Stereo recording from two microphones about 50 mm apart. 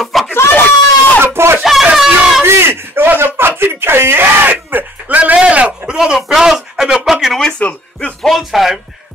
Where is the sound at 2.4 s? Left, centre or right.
Right.